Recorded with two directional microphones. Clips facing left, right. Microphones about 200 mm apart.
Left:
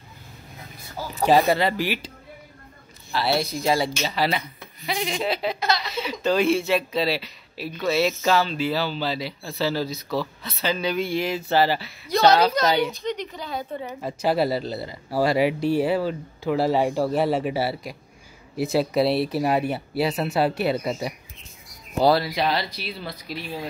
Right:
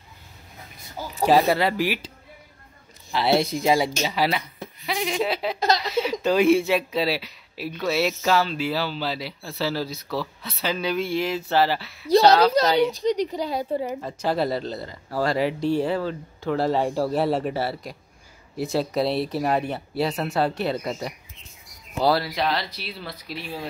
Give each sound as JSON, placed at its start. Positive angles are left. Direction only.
{"t": 1.2, "sound": "speech", "side_deg": -5}
{"t": 3.1, "sound": "speech", "side_deg": -20}
{"t": 12.6, "sound": "speech", "side_deg": -30}
{"t": 14.0, "sound": "speech", "side_deg": 10}